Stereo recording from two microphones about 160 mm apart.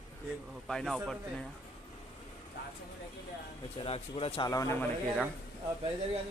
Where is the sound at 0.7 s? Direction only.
5° left (ahead or behind).